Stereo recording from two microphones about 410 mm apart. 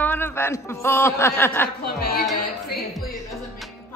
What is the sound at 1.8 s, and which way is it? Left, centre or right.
Speech, left.